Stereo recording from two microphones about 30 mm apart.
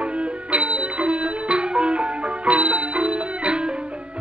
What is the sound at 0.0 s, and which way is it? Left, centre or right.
Music, right.